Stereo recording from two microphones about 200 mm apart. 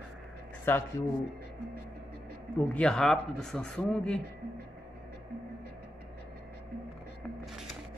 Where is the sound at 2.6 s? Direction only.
5° left (ahead or behind).